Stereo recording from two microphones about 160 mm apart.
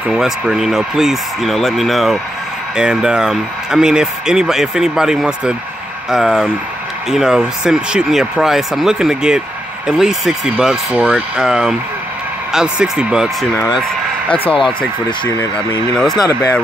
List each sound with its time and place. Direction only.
0.1 s a man's voice: centre (ahead or behind)
14.3 s speech: 35° left (ahead or behind)